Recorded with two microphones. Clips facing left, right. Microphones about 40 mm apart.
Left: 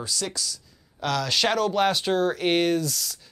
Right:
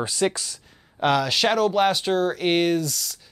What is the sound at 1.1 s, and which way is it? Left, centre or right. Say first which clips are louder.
Speech: left 1 dB; centre.